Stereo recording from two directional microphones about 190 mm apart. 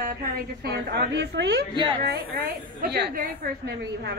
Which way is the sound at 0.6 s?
60° right (ahead or behind).